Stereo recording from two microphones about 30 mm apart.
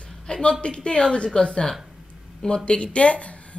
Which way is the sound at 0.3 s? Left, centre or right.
Left.